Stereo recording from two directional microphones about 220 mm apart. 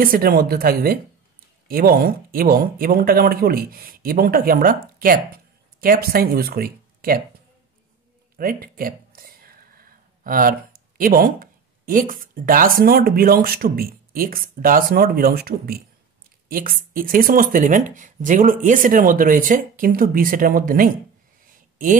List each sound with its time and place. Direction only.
0.0 s speech: 40° right (ahead or behind)
8.4 s a sound: 40° right (ahead or behind)
11.0 s speech: 40° right (ahead or behind)